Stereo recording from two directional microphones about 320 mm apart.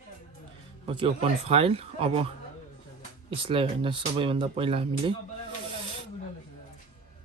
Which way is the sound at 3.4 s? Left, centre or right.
Centre.